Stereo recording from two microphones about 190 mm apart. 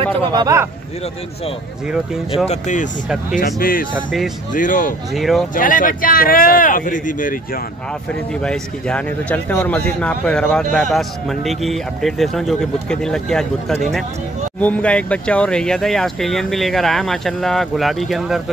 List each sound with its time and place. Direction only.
0.3 s speech: 20° right (ahead or behind)
2.4 s speech: 35° left (ahead or behind)
5.1 s speech: centre (ahead or behind)
5.5 s speech: 45° left (ahead or behind)
8.1 s speech: 5° left (ahead or behind)